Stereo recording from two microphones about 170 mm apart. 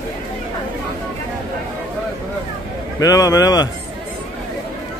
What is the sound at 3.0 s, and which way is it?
Speech, 20° left (ahead or behind).